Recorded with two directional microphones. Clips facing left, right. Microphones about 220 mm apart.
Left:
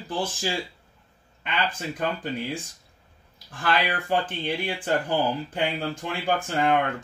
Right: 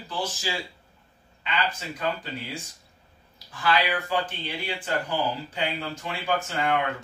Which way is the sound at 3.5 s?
50° left (ahead or behind).